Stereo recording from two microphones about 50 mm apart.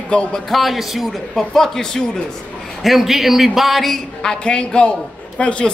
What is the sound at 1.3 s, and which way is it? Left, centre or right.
Speech, centre.